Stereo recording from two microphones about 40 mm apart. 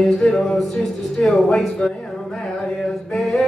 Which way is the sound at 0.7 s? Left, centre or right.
Centre.